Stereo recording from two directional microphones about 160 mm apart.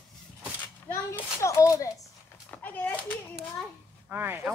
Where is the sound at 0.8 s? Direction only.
15° left (ahead or behind).